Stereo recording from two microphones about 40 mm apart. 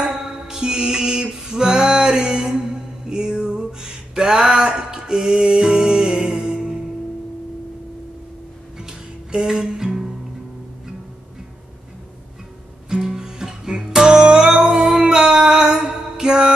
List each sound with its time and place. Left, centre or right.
0.2 s mantra: centre
5.8 s music: centre
9.3 s music: centre
12.9 s music: centre